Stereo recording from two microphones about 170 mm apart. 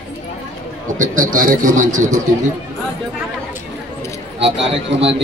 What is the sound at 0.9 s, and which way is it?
A man's voice, 50° right (ahead or behind).